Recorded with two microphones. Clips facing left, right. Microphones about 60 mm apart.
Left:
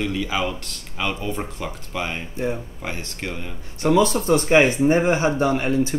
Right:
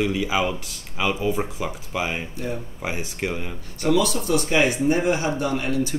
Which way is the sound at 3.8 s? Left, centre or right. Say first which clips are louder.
Left 3 dB; left.